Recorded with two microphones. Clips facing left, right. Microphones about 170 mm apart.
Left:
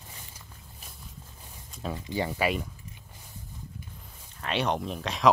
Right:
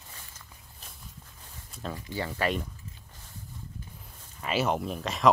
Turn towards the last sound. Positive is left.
turn(degrees=0)  # may be behind; listen again after turning